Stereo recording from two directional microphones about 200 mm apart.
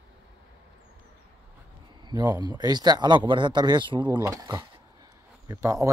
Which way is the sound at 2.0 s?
20° right (ahead or behind).